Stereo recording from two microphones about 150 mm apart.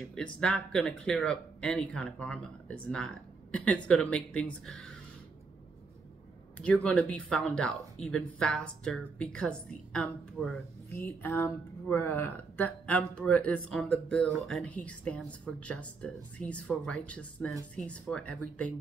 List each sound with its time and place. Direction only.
0.0 s a woman's voice: 5° left (ahead or behind)
6.6 s a woman's voice: 10° left (ahead or behind)